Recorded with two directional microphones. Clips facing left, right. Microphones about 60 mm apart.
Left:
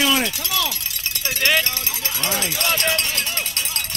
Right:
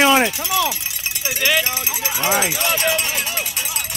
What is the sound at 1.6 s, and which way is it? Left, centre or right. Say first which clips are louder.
Cowbell: right 3 dB; centre.